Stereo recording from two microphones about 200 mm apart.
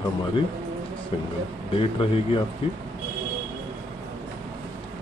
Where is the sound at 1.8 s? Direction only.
25° left (ahead or behind).